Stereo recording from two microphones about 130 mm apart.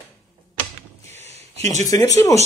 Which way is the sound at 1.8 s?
25° left (ahead or behind).